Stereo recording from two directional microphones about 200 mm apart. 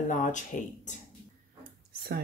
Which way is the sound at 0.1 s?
40° left (ahead or behind).